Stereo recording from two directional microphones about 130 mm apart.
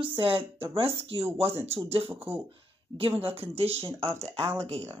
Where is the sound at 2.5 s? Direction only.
45° right (ahead or behind).